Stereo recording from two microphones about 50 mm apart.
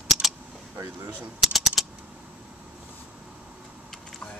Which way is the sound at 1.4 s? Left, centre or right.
Centre.